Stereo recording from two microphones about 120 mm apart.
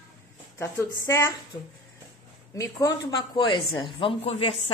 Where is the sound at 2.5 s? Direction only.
30° left (ahead or behind); by 4.7 s 50° left (ahead or behind).